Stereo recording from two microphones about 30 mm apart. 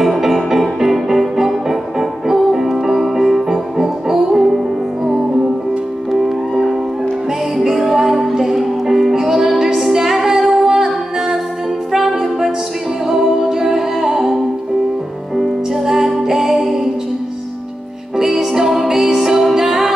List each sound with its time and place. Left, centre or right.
0.0 s music: centre
7.7 s music: centre
15.3 s music: centre
18.1 s music: centre